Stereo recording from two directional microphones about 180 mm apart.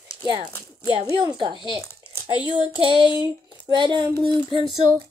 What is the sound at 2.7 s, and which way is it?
Speech, 30° right (ahead or behind).